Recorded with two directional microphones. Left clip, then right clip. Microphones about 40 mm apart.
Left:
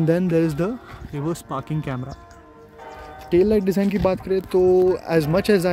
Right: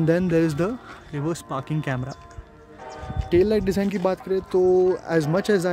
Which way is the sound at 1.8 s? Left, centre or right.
Right.